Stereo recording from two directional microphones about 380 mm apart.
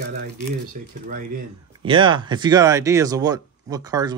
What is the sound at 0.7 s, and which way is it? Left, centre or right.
Speech, right.